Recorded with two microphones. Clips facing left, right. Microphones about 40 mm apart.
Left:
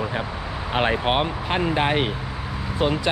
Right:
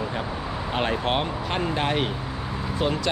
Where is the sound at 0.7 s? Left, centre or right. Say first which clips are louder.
Left 4 dB; left.